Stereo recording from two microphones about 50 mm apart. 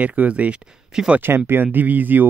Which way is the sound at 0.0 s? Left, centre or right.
Right.